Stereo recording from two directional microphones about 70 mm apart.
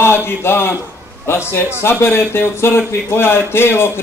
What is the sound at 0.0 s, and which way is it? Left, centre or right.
A man's voice, left.